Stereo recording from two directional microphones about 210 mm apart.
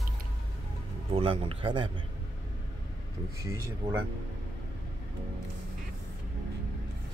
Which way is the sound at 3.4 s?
15° right (ahead or behind).